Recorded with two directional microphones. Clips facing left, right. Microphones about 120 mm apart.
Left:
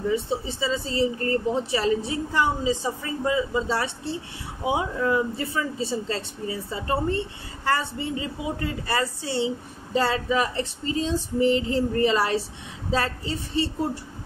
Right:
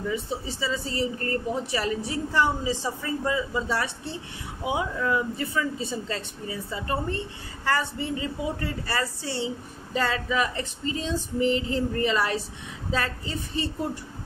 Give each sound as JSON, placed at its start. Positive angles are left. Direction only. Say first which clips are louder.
{"t": 0.1, "sound": "a woman's voice", "louder": "left 4 dB", "side_deg": 25}